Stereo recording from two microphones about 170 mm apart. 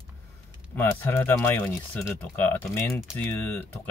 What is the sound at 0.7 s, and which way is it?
Speech, 15° left (ahead or behind).